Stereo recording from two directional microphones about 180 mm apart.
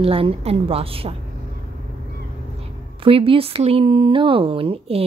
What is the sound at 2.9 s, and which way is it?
Speech, 30° right (ahead or behind).